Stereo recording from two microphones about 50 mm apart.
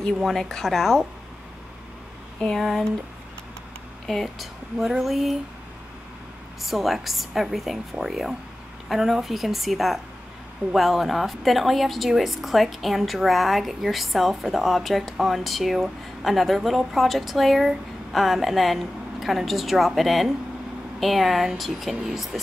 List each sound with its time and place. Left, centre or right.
0.0 s speech: centre
4.0 s a woman's voice: centre
6.6 s a woman's voice: centre